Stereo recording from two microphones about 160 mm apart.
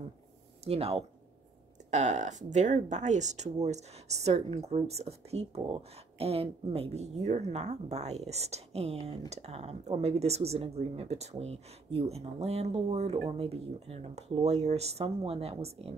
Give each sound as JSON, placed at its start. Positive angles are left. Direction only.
{"t": 0.7, "sound": "speech", "side_deg": -40}